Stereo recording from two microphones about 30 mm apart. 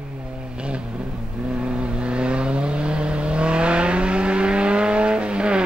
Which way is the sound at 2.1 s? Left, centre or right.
Right.